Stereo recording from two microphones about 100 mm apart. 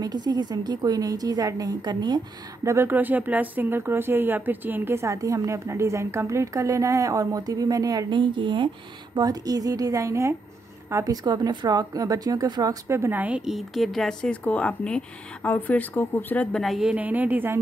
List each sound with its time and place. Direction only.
0.0 s a woman's voice: 45° right (ahead or behind)
2.6 s speech: 25° right (ahead or behind)
8.1 s speech: 50° right (ahead or behind)
9.1 s a woman's voice: 40° right (ahead or behind)
11.2 s a woman's voice: 45° right (ahead or behind)
12.8 s speech: 25° right (ahead or behind)
13.5 s speech: centre (ahead or behind); by 16.4 s 20° left (ahead or behind)
16.5 s a woman's voice: centre (ahead or behind)
16.9 s a woman's voice: 15° right (ahead or behind)